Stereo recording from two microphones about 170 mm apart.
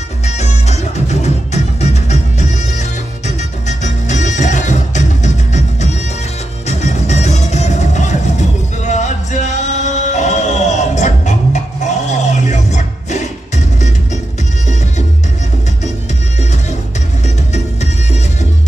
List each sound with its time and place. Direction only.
0.2 s music: 40° left (ahead or behind)